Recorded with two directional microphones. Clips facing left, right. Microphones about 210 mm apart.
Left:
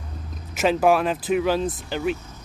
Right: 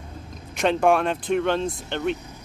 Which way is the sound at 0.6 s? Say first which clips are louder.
Left 1 dB; 5° left (ahead or behind).